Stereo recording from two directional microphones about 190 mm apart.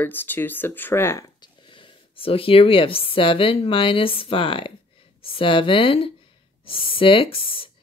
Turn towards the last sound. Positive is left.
turn(degrees=30)  # may be behind; listen again after turning